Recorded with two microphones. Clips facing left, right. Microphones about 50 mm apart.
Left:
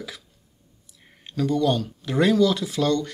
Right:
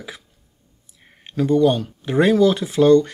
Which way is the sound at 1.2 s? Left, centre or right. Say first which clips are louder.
Right 6 dB; right.